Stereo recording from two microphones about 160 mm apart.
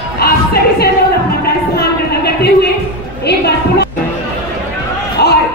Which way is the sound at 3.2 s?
90° left.